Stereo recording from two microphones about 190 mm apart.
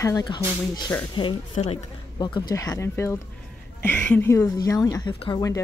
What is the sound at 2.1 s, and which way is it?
Speech, 25° left (ahead or behind).